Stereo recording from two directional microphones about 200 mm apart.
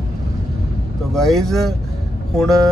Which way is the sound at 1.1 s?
Centre (ahead or behind).